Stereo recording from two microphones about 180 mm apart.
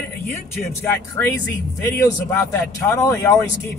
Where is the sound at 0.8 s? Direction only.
10° left (ahead or behind).